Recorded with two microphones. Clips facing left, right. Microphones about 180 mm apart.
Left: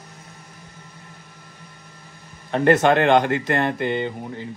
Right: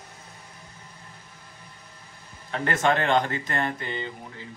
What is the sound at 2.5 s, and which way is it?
Speech, 65° left (ahead or behind).